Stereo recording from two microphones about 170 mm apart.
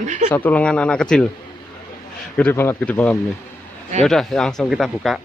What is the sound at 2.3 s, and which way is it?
A man's voice, 10° left (ahead or behind).